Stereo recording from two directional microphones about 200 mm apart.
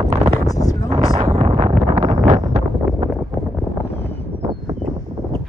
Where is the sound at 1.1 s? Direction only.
30° right (ahead or behind).